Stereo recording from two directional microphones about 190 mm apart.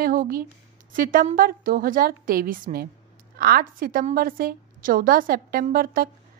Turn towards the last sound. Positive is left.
turn(degrees=-50)  # may be behind; listen again after turning